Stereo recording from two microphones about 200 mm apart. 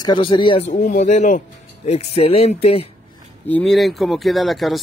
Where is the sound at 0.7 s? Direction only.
40° left (ahead or behind).